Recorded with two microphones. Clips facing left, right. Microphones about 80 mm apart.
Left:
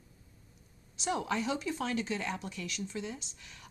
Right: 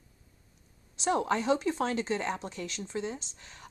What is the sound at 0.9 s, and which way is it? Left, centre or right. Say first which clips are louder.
Speech: right 5 dB; right.